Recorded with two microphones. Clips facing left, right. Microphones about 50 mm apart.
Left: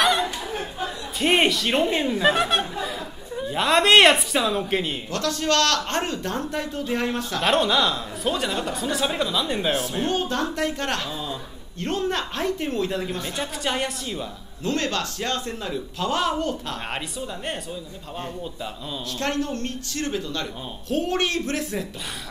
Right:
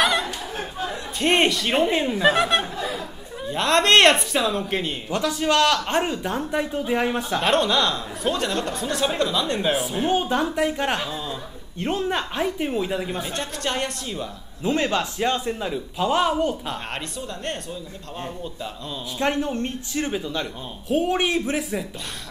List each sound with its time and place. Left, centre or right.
0.0 s a sound: centre
1.2 s a woman's voice: centre
5.1 s a man's voice: centre
7.4 s a woman's voice: centre
13.4 s a woman's voice: centre
14.6 s a man's voice: centre
18.2 s a woman's voice: centre
19.1 s a man's voice: centre